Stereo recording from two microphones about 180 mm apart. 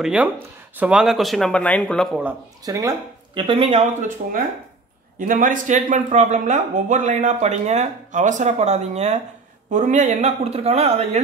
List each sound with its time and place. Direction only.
0.0 s speech: 5° right (ahead or behind)
2.6 s speech: 15° right (ahead or behind)
3.3 s speech: 30° right (ahead or behind)